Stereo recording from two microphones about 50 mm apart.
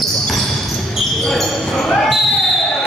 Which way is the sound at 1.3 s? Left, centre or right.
Centre.